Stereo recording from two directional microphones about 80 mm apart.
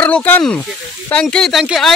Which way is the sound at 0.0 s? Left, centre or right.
Centre.